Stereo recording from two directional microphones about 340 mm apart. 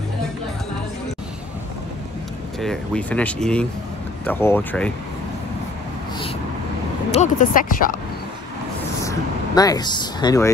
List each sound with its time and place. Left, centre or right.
2.6 s speech: centre
7.1 s speech: left
9.6 s speech: centre